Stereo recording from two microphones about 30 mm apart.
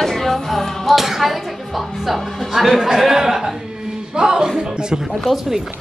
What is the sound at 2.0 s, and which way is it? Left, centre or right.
Speech, centre.